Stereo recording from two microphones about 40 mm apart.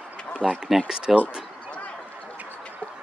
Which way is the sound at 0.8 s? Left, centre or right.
Right.